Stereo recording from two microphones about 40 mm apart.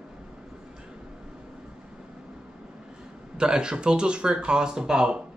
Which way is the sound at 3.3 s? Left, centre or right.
Right.